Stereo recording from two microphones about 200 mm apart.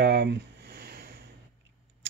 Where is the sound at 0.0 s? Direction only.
55° right (ahead or behind).